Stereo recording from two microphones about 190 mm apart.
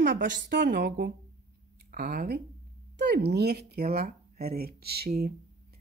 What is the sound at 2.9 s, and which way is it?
A woman's voice, 60° right (ahead or behind).